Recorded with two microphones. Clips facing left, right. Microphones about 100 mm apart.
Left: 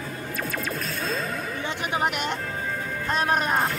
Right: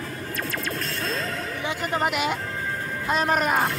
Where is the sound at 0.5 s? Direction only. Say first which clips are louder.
Even; 5° left (ahead or behind).